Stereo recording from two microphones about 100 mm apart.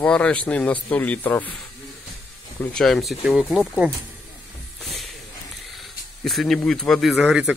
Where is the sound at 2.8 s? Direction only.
Centre (ahead or behind).